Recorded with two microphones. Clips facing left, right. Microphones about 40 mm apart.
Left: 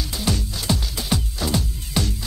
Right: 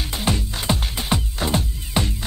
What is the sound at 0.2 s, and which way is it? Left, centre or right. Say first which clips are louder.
Music: right 2 dB; right.